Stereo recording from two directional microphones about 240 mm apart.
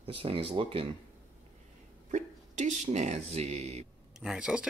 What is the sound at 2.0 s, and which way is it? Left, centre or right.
Speech, right.